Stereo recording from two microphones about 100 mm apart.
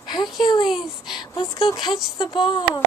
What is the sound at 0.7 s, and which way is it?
Speech, 5° right (ahead or behind).